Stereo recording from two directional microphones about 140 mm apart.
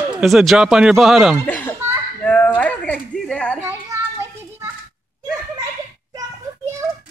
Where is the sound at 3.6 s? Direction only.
20° right (ahead or behind).